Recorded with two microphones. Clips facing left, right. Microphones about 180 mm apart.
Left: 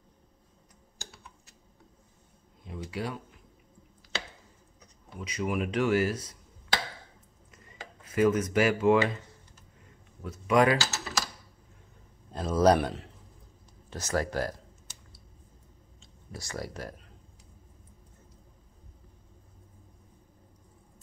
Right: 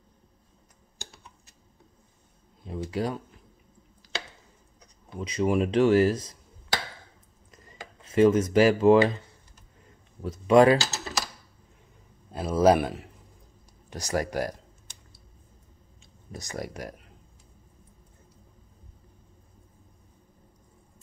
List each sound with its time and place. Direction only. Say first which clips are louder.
2.6 s speech: right 6 dB; 35° right (ahead or behind)
5.2 s speech: right 6 dB; 30° right (ahead or behind)
7.5 s a sound: right 2 dB; 30° right (ahead or behind)
10.2 s speech: right 6 dB; 30° right (ahead or behind)
12.3 s a man's voice: right 2 dB; 10° right (ahead or behind)
16.3 s speech: right 2 dB; 20° right (ahead or behind)